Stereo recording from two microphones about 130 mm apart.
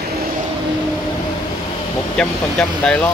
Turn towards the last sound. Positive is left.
turn(degrees=5)  # may be behind; listen again after turning